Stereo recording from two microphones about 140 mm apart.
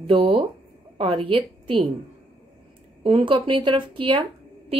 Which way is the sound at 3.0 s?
40° right (ahead or behind).